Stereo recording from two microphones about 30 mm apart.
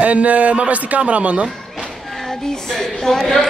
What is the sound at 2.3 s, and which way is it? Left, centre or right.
Speech, centre.